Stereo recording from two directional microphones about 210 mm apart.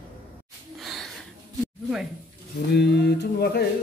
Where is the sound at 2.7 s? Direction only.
55° left (ahead or behind).